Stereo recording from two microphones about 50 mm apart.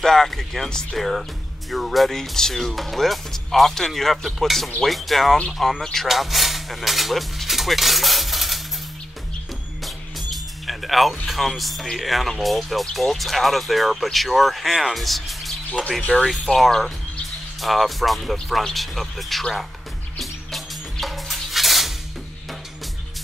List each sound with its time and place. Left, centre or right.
0.0 s speech: centre
9.8 s speech: centre
16.1 s speech: left
16.4 s speech: centre
20.2 s music: centre